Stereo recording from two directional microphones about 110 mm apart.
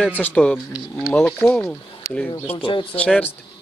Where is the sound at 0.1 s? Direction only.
15° left (ahead or behind).